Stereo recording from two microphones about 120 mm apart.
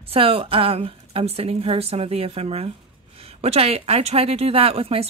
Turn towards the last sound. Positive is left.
turn(degrees=-55)  # may be behind; listen again after turning